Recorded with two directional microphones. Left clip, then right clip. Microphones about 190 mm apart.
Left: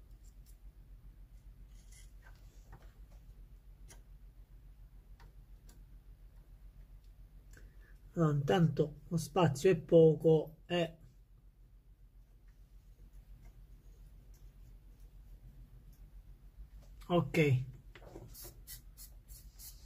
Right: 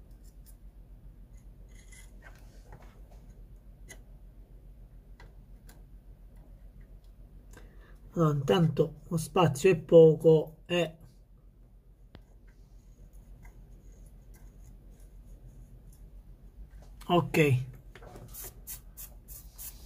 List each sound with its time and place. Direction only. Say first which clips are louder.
8.1 s speech: right 5 dB; 25° right (ahead or behind)
17.0 s speech: right 6 dB; 30° right (ahead or behind)